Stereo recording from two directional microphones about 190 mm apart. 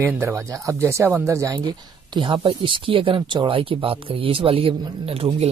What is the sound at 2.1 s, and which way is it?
Speech, 25° right (ahead or behind).